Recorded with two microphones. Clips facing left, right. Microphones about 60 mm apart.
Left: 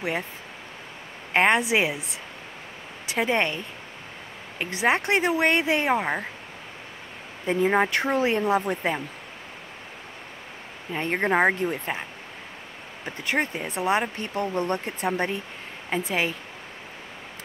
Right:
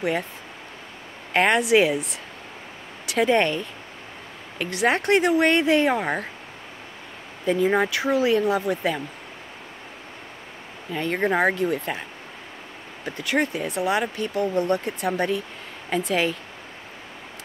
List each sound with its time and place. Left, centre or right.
1.3 s speech: left
3.1 s speech: centre
7.4 s speech: left
7.9 s speech: left
8.3 s speech: left
10.9 s speech: left
13.2 s speech: left